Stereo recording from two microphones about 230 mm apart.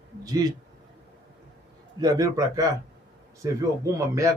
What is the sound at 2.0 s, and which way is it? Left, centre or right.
Speech, centre.